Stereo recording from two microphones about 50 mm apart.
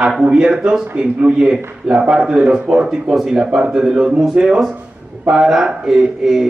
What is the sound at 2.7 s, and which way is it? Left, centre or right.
A man's voice, centre.